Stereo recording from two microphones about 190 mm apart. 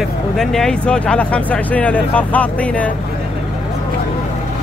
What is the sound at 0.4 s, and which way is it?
Speech, centre (ahead or behind).